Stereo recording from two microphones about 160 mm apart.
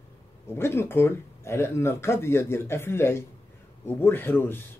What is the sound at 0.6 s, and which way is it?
Speech, 15° left (ahead or behind).